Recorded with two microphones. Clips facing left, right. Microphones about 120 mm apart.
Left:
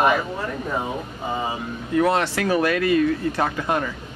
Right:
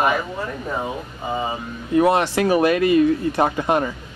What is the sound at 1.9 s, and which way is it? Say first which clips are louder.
Speech: right 3 dB; 15° right (ahead or behind).